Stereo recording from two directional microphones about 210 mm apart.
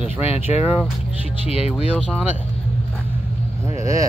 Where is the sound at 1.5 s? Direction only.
30° left (ahead or behind).